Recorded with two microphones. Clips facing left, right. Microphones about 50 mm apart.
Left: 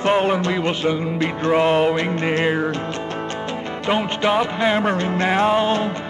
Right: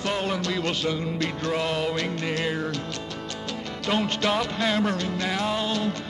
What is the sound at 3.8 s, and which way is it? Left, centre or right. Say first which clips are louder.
Music: left 5 dB; left.